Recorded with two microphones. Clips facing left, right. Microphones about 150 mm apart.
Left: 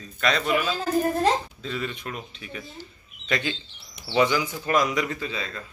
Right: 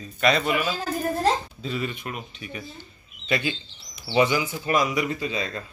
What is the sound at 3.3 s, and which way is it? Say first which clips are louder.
Speech: right 1 dB; 10° right (ahead or behind).